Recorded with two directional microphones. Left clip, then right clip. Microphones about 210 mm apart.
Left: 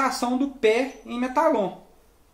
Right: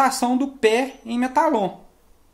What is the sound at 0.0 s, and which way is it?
Speech, 50° right (ahead or behind).